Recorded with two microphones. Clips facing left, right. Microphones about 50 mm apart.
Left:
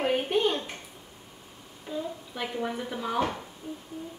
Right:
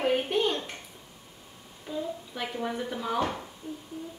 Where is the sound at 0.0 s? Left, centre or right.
Centre.